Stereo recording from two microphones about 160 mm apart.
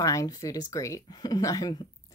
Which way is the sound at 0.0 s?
20° left (ahead or behind).